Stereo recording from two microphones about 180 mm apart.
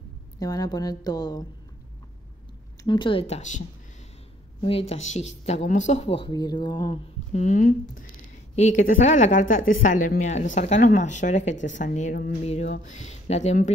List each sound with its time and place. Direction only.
0.4 s a woman's voice: 20° left (ahead or behind)
2.8 s speech: 25° left (ahead or behind)
7.3 s speech: 45° left (ahead or behind)